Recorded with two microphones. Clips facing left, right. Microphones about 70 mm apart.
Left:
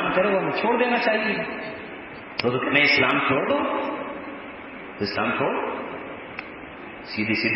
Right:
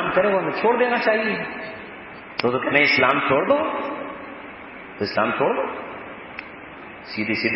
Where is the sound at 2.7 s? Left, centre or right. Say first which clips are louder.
Right 3 dB; right.